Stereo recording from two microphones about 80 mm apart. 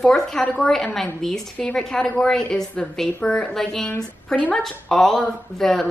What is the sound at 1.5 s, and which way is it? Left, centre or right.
A woman's voice, centre.